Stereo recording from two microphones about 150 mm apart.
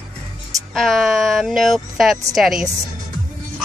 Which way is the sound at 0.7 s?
Centre (ahead or behind).